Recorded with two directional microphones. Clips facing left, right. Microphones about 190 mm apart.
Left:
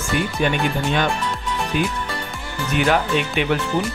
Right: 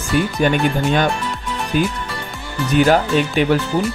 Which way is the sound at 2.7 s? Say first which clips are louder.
Right 5 dB; 35° right (ahead or behind).